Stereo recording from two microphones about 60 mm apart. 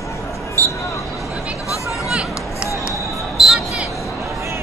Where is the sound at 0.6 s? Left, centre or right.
Right.